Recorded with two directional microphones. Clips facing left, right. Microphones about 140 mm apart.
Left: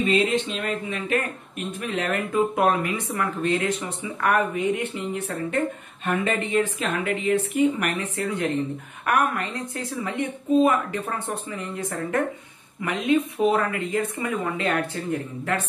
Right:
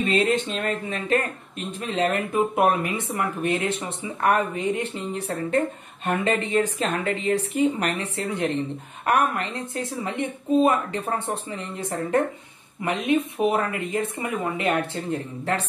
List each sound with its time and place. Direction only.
0.1 s speech: 45° right (ahead or behind)
1.1 s speech: 30° right (ahead or behind)